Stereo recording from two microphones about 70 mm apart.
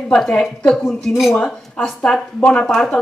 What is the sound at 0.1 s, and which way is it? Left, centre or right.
Speech, centre.